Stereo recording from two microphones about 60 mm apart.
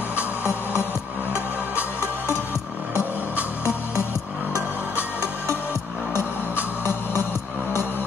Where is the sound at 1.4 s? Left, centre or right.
Right.